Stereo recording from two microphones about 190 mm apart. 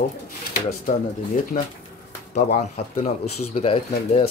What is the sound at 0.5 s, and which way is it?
Speech, 45° left (ahead or behind).